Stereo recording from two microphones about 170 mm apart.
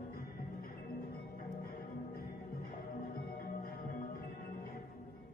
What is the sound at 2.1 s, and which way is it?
Music, 60° left (ahead or behind).